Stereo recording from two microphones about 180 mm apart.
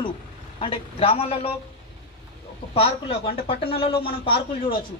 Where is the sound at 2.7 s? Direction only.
30° left (ahead or behind).